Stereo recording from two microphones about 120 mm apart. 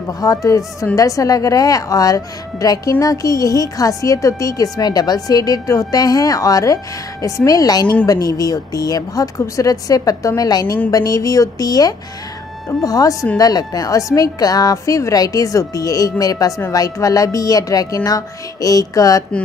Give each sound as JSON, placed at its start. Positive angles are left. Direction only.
{"t": 0.2, "sound": "a woman's voice", "side_deg": 30}